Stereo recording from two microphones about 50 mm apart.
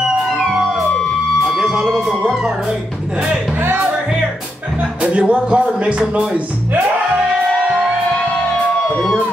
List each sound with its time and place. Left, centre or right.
1.4 s music: centre
5.0 s speech: right